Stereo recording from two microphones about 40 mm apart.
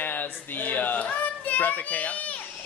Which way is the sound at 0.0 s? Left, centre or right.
Left.